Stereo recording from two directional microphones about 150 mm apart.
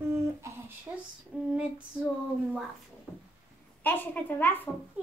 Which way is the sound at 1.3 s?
5° right (ahead or behind).